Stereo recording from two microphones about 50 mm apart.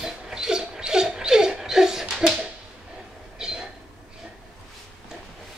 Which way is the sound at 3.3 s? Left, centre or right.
Centre.